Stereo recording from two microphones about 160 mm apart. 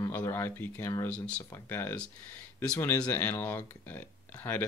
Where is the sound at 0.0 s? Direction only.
20° left (ahead or behind).